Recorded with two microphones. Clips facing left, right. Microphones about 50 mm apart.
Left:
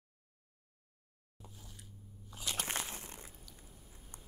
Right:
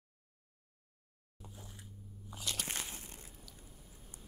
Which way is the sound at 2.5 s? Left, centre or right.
Left.